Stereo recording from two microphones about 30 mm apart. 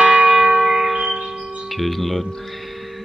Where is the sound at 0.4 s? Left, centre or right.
Right.